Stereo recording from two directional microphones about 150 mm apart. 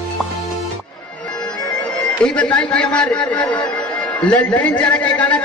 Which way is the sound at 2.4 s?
10° left (ahead or behind).